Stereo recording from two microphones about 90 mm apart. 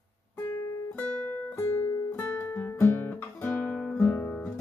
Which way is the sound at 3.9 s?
25° left (ahead or behind).